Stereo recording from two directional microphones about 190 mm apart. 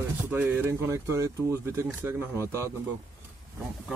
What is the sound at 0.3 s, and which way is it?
Speech, 10° right (ahead or behind).